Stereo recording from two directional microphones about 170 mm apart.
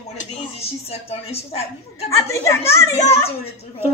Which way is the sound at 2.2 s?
15° left (ahead or behind).